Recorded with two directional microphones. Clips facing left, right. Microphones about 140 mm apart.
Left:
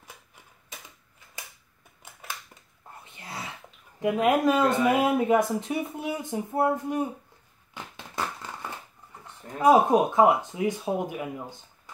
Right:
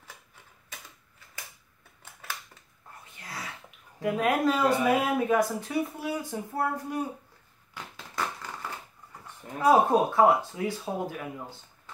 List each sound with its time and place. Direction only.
3.1 s sneeze: 25° left (ahead or behind)
4.0 s speech: 20° left (ahead or behind)
7.7 s a sound: 20° left (ahead or behind)
9.6 s speech: 15° left (ahead or behind)